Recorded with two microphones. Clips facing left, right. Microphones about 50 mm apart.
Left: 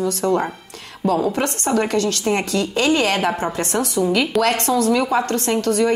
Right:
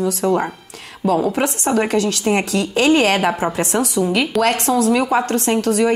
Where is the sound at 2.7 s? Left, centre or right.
Right.